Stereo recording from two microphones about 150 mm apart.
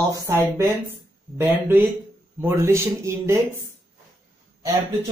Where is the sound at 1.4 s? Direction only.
15° right (ahead or behind).